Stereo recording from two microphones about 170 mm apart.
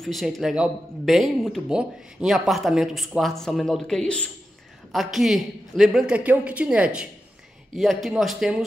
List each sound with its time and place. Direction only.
0.0 s speech: centre (ahead or behind)